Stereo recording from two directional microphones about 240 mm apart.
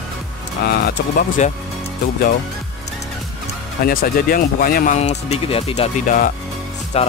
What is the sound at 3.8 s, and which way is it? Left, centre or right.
Speech, left.